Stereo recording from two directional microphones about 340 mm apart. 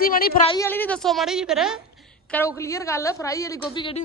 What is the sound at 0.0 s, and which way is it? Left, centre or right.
A woman's voice, left.